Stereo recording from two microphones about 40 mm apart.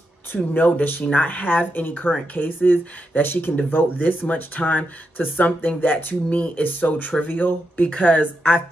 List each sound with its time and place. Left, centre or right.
0.6 s speech: left
4.3 s speech: left